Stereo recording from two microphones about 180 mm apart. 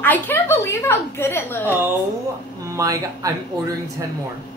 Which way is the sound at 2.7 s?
20° right (ahead or behind).